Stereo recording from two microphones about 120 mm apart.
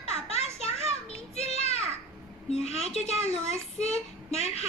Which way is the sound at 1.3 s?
60° left (ahead or behind).